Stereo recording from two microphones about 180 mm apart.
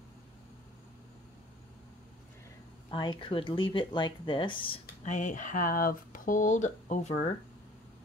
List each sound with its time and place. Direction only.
2.9 s speech: 25° left (ahead or behind)